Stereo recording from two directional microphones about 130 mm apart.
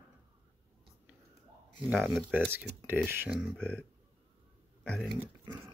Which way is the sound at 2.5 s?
15° right (ahead or behind).